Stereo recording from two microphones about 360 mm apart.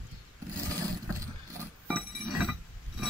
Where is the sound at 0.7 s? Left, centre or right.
Centre.